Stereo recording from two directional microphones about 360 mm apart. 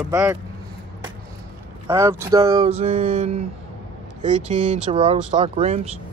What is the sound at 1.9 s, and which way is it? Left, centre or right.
Speech, centre.